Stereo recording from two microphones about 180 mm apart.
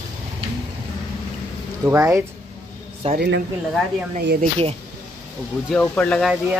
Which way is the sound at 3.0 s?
35° right (ahead or behind).